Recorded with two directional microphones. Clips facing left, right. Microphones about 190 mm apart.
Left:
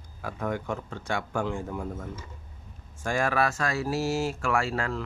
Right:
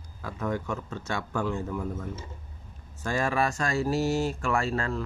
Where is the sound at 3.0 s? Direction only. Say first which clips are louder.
Left 1 dB; 10° left (ahead or behind).